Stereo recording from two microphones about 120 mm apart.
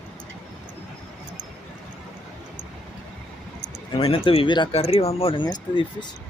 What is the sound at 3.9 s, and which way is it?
Speech, 50° left (ahead or behind).